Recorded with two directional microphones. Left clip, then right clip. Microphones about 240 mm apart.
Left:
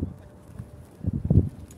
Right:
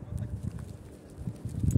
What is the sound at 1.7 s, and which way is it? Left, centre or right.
Horse, right.